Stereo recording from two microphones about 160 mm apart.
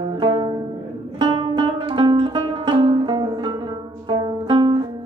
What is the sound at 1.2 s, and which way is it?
Music, 30° right (ahead or behind).